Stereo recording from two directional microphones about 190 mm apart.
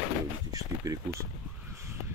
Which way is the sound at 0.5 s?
20° right (ahead or behind).